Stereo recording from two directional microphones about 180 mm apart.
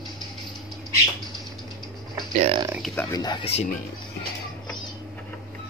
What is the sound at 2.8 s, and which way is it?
Speech, centre (ahead or behind).